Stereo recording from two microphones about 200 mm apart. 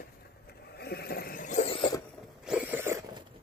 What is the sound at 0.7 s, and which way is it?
Vehicle, 50° left (ahead or behind).